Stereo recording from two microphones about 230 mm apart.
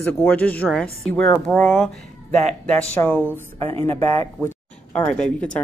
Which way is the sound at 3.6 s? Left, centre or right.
Right.